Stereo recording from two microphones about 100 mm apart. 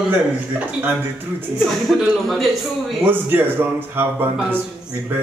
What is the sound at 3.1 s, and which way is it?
Speech, 20° right (ahead or behind).